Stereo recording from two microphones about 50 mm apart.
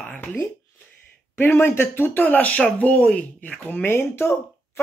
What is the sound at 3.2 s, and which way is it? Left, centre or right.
Speech, left.